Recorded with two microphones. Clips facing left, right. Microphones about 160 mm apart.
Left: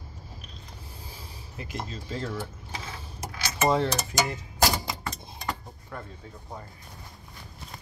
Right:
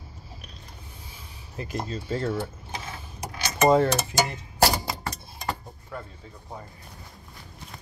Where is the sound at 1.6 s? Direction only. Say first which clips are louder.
Right 5 dB; 40° right (ahead or behind).